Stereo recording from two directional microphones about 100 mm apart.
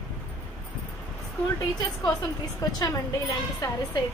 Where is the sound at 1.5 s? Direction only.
40° left (ahead or behind).